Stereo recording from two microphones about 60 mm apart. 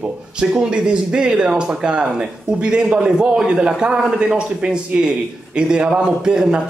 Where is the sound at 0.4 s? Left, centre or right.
Centre.